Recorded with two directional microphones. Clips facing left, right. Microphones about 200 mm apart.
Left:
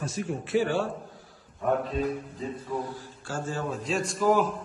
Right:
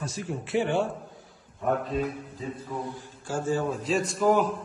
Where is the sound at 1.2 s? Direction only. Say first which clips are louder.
Even; centre (ahead or behind).